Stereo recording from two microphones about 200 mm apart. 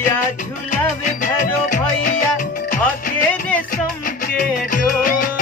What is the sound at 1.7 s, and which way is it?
Music, 40° left (ahead or behind).